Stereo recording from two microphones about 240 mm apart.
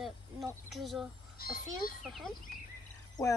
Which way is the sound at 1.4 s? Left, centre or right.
Left.